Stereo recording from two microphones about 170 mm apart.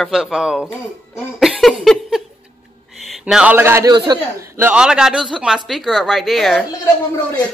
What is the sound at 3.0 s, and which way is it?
A man's voice, 5° right (ahead or behind).